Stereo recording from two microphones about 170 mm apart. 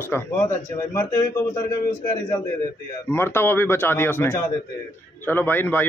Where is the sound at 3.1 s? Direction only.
15° left (ahead or behind).